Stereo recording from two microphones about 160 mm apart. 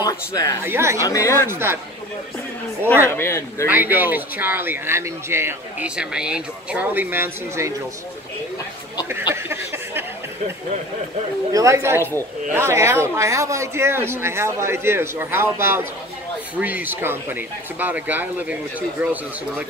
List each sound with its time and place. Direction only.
0.0 s speech: 20° left (ahead or behind)
0.7 s speech: 15° right (ahead or behind)
1.0 s speech: 20° left (ahead or behind)
1.5 s speech: 15° right (ahead or behind)
2.9 s speech: 15° left (ahead or behind)
3.6 s speech: 10° right (ahead or behind)
9.3 s a sound: 15° right (ahead or behind)
11.5 s speech: 20° right (ahead or behind)
12.0 s speech: 15° left (ahead or behind)
12.5 s speech: 15° right (ahead or behind)